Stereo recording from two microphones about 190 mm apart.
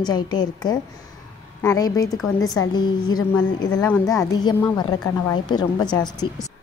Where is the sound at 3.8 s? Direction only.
15° left (ahead or behind).